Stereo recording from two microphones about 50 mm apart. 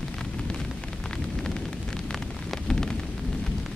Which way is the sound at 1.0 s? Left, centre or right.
Centre.